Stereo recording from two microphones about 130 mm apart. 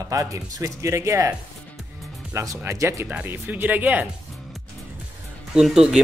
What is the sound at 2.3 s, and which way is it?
Speech, 25° right (ahead or behind).